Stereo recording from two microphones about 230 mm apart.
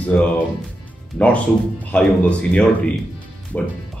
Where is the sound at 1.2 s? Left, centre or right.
Centre.